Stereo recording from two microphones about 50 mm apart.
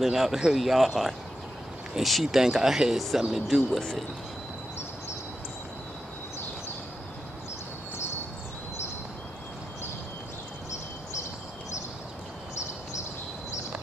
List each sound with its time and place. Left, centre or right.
0.0 s speech: centre